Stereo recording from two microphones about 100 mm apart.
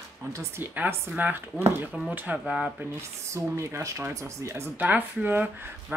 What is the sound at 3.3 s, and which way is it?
Speech, 30° right (ahead or behind).